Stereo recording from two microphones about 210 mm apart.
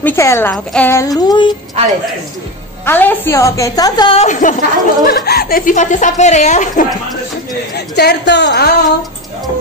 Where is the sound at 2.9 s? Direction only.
10° left (ahead or behind); by 6.9 s 35° left (ahead or behind).